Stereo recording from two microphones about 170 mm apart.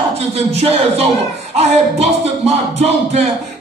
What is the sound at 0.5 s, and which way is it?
A man's voice, 35° right (ahead or behind).